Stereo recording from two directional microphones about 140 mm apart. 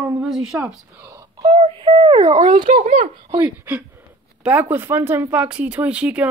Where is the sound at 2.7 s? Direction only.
80° right.